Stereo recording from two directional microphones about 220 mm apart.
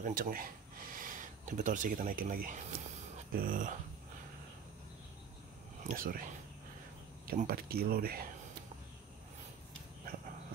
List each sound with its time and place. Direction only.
0.0 s speech: 40° right (ahead or behind)
5.9 s speech: 40° right (ahead or behind)
7.2 s speech: 40° right (ahead or behind)